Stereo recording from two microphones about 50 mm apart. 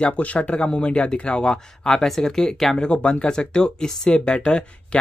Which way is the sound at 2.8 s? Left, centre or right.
Left.